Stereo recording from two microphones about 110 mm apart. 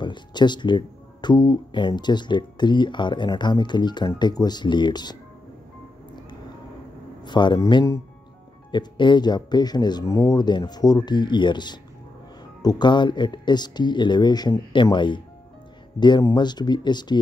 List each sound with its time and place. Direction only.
0.0 s speech: 45° left (ahead or behind)
7.2 s speech: 45° left (ahead or behind)
8.7 s speech: 45° left (ahead or behind)
16.3 s speech: 40° left (ahead or behind)